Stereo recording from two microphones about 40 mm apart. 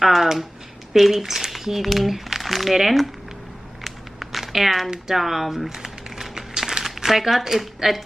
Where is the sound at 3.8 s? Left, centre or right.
Centre.